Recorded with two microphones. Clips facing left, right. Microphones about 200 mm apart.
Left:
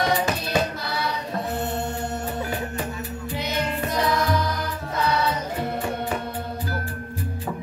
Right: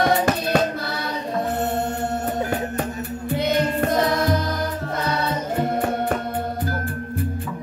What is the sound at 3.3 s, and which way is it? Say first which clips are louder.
Music: right 7 dB; 55° right (ahead or behind).